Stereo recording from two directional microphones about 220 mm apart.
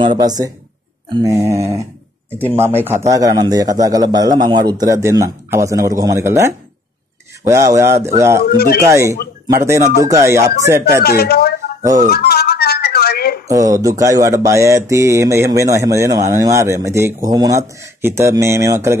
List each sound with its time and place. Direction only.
0.0 s speech: 20° right (ahead or behind)
8.5 s speech: 45° left (ahead or behind)
8.8 s speech: 15° right (ahead or behind)
11.0 s speech: 45° left (ahead or behind)
12.1 s music: 45° left (ahead or behind)
13.5 s speech: 15° right (ahead or behind)